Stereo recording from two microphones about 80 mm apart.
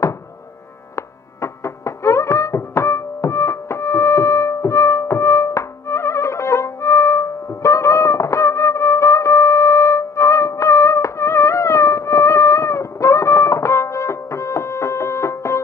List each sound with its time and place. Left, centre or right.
0.9 s music: left